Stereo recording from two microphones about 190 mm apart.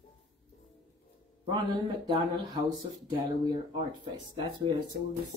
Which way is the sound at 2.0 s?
25° right (ahead or behind).